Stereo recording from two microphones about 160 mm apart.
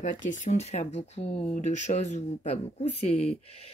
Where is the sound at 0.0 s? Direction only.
50° left (ahead or behind).